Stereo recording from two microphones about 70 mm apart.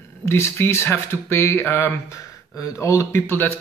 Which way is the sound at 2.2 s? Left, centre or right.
Left.